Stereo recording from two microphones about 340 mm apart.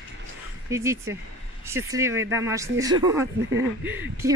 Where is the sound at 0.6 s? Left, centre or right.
Centre.